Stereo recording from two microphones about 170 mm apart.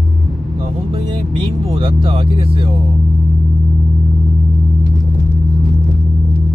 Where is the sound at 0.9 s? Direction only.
30° right (ahead or behind).